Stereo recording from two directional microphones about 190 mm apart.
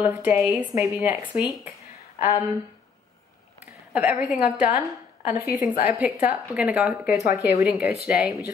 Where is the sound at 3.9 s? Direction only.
10° right (ahead or behind).